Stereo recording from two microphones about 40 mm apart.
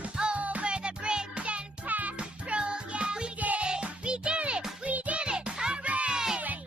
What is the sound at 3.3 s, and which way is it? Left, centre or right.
Music, right.